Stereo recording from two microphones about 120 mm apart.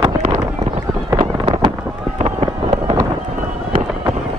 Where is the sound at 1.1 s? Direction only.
45° right (ahead or behind).